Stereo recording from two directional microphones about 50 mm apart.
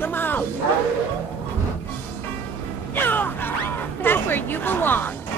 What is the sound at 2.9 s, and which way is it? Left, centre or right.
Speech, left.